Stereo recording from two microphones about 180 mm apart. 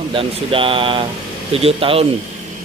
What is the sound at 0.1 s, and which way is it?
Speech, 30° right (ahead or behind).